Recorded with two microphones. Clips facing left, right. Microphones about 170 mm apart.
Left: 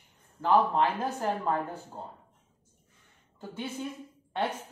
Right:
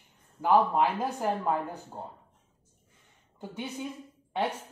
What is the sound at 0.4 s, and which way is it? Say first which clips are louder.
Speech: right 1 dB; 10° right (ahead or behind).